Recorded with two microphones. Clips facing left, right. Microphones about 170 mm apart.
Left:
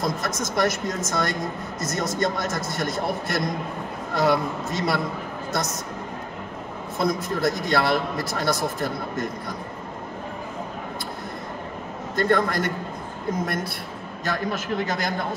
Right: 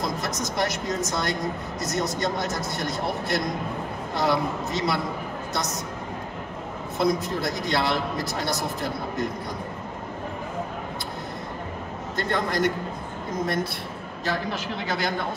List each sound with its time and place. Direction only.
0.2 s a man's voice: 50° left (ahead or behind)
7.0 s a man's voice: 50° left (ahead or behind)
12.2 s a man's voice: 50° left (ahead or behind)
14.2 s a man's voice: 45° left (ahead or behind)